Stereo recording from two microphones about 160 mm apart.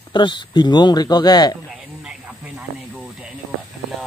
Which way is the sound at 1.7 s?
Centre (ahead or behind).